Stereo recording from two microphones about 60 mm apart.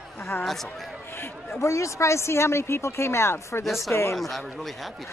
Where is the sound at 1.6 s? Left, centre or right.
Left.